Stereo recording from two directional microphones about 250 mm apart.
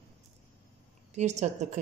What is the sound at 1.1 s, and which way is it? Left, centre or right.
Speech, right.